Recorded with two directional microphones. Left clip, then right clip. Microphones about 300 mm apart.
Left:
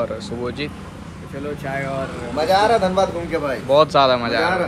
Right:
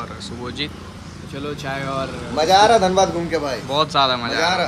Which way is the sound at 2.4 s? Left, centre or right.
Right.